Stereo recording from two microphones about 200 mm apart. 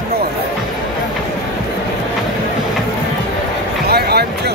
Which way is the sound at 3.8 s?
50° right (ahead or behind).